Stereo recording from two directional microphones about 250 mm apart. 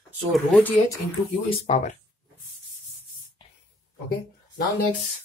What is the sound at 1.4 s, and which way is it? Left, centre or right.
Speech, left.